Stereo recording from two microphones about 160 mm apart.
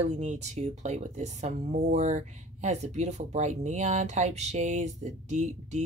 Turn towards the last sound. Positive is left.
turn(degrees=-45)  # may be behind; listen again after turning